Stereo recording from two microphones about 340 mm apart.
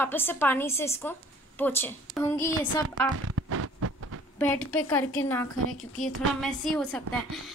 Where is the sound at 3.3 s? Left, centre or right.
Right.